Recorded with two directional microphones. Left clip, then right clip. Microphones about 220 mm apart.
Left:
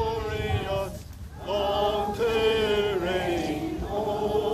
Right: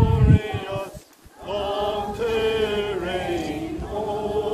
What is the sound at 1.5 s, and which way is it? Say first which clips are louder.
Chant: even; 5° left (ahead or behind).